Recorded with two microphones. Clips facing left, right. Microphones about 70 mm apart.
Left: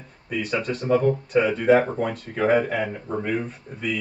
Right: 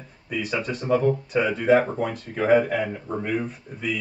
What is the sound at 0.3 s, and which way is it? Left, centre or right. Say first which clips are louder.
Speech: left 1 dB; centre.